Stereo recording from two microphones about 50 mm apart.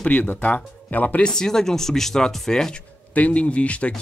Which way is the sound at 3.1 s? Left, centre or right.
Left.